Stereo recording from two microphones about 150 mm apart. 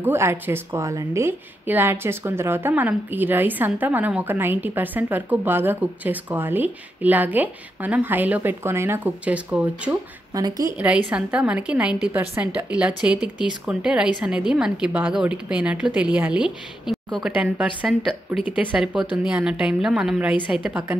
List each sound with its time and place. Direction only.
0.0 s a woman's voice: 15° right (ahead or behind)
10.3 s a woman's voice: 25° right (ahead or behind)
10.8 s a woman's voice: 10° right (ahead or behind)